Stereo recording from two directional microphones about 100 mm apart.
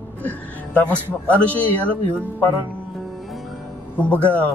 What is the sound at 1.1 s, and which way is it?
Speech, 15° left (ahead or behind).